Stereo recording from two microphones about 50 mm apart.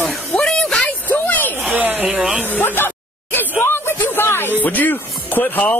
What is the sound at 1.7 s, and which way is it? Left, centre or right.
Speech, right.